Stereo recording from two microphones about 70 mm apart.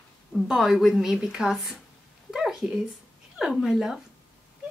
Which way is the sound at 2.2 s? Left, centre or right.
Centre.